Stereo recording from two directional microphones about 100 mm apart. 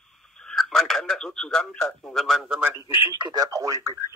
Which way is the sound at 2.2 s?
5° right (ahead or behind).